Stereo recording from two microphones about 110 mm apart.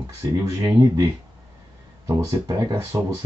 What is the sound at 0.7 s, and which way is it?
Speech, 30° right (ahead or behind).